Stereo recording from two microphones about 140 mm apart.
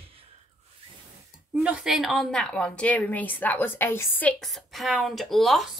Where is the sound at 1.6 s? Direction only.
5° right (ahead or behind); by 4.3 s 15° left (ahead or behind).